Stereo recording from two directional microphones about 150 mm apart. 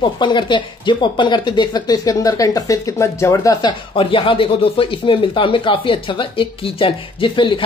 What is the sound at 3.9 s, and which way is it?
Speech, 35° left (ahead or behind).